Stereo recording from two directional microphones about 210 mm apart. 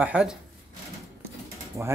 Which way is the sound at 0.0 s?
5° right (ahead or behind).